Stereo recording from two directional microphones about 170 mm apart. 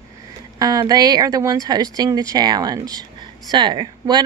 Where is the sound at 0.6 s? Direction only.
20° right (ahead or behind).